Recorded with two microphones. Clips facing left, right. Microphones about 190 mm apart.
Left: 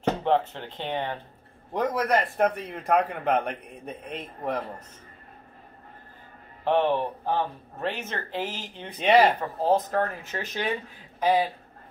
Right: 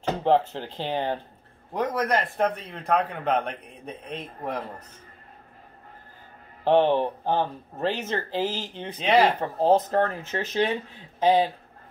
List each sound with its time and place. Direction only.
0.2 s speech: 30° right (ahead or behind)
1.7 s a man's voice: 5° left (ahead or behind)
6.6 s speech: 30° right (ahead or behind)
9.0 s a man's voice: centre (ahead or behind)
9.4 s speech: 25° right (ahead or behind)